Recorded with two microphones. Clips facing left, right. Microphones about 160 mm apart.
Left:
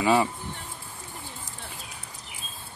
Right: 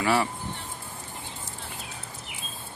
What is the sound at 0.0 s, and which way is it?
Speech, 20° left (ahead or behind).